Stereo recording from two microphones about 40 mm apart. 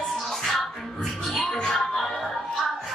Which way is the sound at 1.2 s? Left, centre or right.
Centre.